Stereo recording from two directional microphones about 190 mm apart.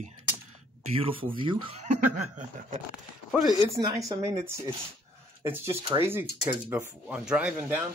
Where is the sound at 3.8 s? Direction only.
20° right (ahead or behind).